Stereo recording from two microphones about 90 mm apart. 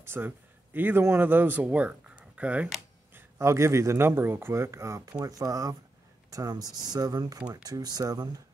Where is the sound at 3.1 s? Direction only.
30° right (ahead or behind).